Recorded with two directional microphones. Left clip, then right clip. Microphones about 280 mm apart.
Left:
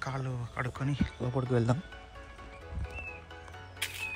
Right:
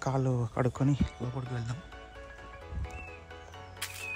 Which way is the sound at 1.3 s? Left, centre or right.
Centre.